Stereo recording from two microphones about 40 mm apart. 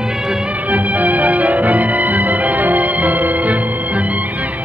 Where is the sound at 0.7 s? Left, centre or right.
Right.